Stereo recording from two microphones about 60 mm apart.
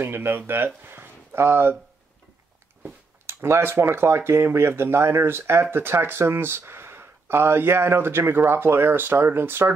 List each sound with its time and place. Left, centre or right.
0.0 s speech: right
2.8 s a sound: right
3.4 s speech: right